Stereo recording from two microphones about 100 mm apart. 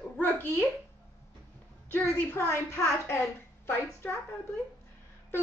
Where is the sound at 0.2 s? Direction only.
20° left (ahead or behind).